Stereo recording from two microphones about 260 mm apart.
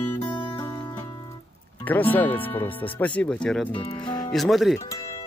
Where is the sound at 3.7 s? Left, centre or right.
Centre.